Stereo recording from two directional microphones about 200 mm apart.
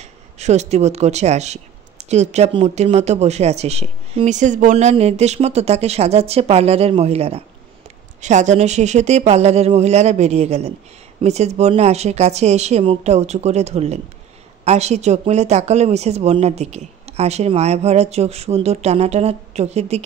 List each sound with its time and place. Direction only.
0.0 s speech: 35° right (ahead or behind)